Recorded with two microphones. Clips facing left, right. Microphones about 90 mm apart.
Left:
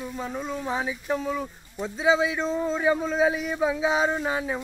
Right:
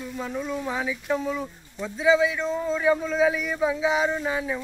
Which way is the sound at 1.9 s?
35° left (ahead or behind).